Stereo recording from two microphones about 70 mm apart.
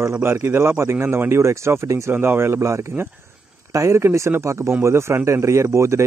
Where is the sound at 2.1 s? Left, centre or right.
Right.